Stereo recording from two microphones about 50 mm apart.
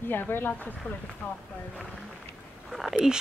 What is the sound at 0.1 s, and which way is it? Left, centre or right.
Speech, left.